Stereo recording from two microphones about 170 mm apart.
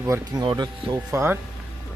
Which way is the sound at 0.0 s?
20° right (ahead or behind).